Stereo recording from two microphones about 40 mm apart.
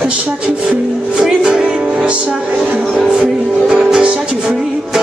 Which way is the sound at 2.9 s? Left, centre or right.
Centre.